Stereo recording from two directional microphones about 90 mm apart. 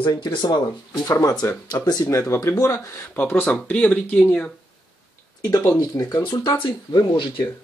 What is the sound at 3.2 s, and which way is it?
Speech, 20° left (ahead or behind).